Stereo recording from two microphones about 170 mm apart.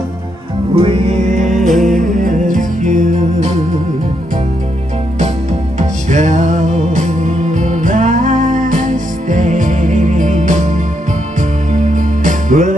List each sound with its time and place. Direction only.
0.7 s music: 35° right (ahead or behind)
1.5 s music: centre (ahead or behind)
2.0 s music: 50° right (ahead or behind)
5.8 s music: 45° right (ahead or behind)
11.7 s music: 45° right (ahead or behind)